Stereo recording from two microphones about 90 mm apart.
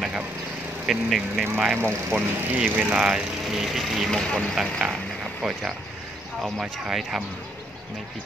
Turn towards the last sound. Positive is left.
turn(degrees=-5)  # may be behind; listen again after turning